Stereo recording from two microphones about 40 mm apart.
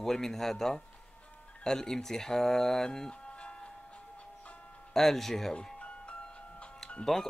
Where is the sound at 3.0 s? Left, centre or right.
Left.